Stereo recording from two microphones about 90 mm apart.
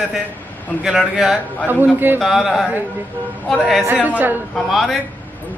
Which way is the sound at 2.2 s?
5° right (ahead or behind).